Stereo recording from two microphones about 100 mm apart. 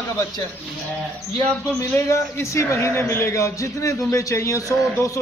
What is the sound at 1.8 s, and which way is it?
A man's voice, 30° left (ahead or behind).